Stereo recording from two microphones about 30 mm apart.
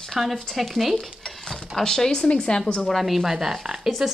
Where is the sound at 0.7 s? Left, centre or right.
Centre.